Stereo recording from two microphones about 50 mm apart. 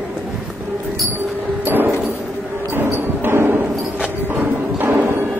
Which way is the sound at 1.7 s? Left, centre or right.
Right.